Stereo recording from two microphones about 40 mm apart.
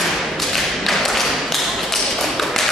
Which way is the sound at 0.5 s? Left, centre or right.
Centre.